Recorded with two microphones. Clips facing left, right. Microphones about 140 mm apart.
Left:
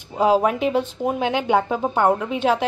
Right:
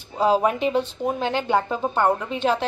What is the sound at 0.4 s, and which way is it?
A woman's voice, centre (ahead or behind).